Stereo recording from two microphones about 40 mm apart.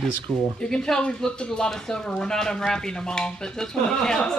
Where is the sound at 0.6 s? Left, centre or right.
Left.